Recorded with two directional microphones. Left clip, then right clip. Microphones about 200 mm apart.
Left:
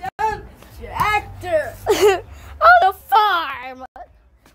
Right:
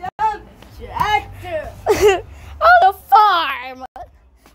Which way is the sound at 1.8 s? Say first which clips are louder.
Right 4 dB; centre (ahead or behind).